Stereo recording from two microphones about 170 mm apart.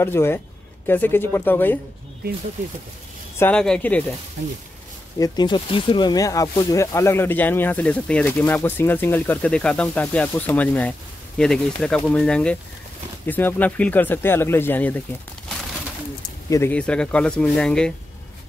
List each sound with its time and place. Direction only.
0.0 s speech: 15° left (ahead or behind)
3.3 s speech: 10° left (ahead or behind)
5.2 s speech: 25° left (ahead or behind); by 15.6 s 5° left (ahead or behind)
16.4 s speech: 20° left (ahead or behind)
16.7 s speech: 5° left (ahead or behind)